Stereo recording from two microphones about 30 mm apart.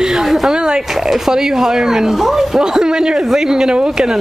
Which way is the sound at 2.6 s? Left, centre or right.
Right.